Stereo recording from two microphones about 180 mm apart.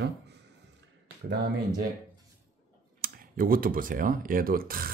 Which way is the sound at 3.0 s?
50° right (ahead or behind).